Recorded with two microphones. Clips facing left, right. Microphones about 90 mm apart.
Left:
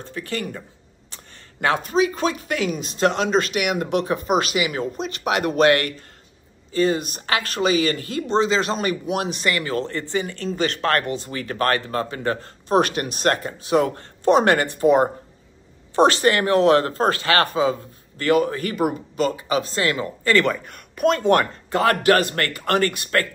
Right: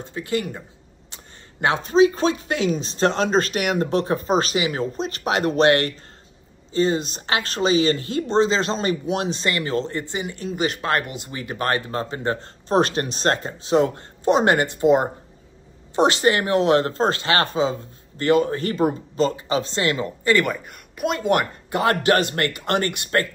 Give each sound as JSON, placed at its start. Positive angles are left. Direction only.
{"t": 0.0, "sound": "speech", "side_deg": -20}
{"t": 1.1, "sound": "a sound", "side_deg": -20}
{"t": 2.1, "sound": "speech", "side_deg": -30}
{"t": 20.2, "sound": "speech", "side_deg": -10}